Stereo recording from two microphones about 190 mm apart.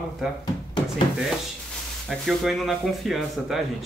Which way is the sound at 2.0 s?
Centre (ahead or behind).